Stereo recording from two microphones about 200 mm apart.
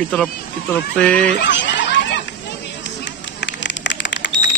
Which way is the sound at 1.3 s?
60° left (ahead or behind).